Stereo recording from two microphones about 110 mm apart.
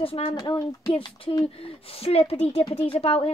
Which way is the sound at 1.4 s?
60° left (ahead or behind).